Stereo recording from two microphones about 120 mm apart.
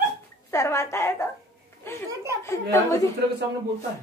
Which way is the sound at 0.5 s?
25° left (ahead or behind).